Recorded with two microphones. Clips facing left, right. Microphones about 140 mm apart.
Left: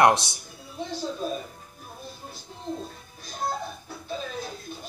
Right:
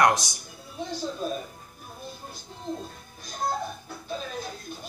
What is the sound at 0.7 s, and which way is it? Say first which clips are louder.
Speech: left 1 dB; centre (ahead or behind).